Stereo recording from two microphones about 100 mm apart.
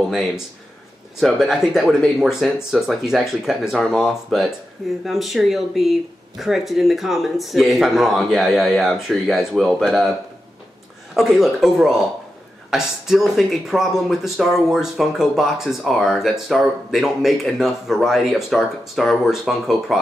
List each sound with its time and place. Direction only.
1.2 s speech: centre (ahead or behind)
11.1 s speech: centre (ahead or behind)